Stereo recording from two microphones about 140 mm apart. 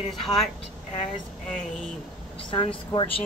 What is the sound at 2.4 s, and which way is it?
Speech, 35° left (ahead or behind).